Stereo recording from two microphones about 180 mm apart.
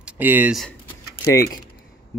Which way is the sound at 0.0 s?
10° right (ahead or behind).